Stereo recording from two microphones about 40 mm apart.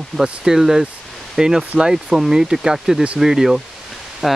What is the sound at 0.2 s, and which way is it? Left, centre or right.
Speech, centre.